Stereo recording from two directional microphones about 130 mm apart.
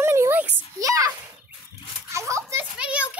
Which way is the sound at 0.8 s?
25° right (ahead or behind).